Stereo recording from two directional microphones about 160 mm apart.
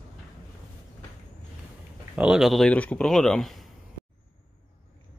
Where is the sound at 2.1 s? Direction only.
5° right (ahead or behind).